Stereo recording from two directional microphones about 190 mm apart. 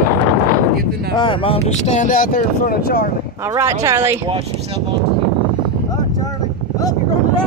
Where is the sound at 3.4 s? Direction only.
15° right (ahead or behind).